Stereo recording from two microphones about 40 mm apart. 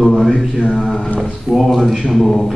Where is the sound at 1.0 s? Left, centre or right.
Left.